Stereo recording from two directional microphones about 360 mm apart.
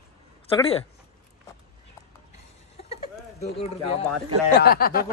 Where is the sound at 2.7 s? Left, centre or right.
Centre.